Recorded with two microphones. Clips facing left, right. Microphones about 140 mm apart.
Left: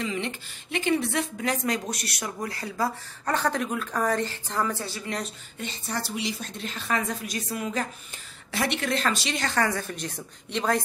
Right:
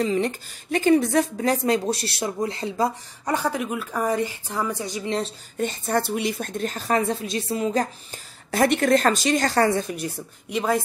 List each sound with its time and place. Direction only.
0.0 s a woman's voice: 40° right (ahead or behind); by 2.9 s 25° right (ahead or behind)
3.3 s a woman's voice: 10° right (ahead or behind)
5.6 s a woman's voice: 50° right (ahead or behind); by 9.8 s 30° right (ahead or behind)
9.8 s a woman's voice: 10° right (ahead or behind)